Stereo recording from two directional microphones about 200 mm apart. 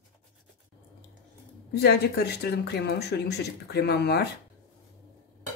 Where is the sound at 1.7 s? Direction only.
55° left (ahead or behind).